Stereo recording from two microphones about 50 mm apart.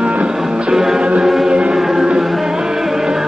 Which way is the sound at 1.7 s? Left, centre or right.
Centre.